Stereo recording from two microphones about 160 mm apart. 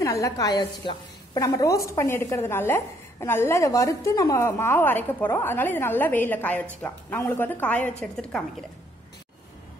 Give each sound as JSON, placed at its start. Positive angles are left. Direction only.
{"t": 0.0, "sound": "a woman's voice", "side_deg": 20}